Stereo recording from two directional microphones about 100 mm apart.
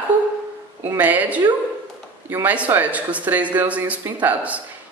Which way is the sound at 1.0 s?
15° right (ahead or behind).